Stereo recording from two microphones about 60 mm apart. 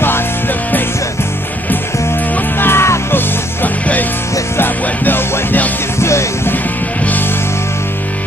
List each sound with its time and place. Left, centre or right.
2.6 s music: left
3.6 s music: left
5.9 s music: left